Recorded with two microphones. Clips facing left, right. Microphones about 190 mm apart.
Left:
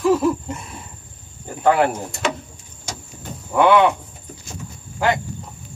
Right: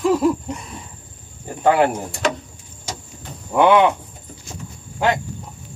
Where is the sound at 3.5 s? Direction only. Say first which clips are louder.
Right 1 dB; 20° right (ahead or behind).